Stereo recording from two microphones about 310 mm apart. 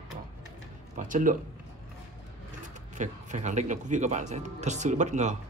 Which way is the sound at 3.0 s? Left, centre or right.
Right.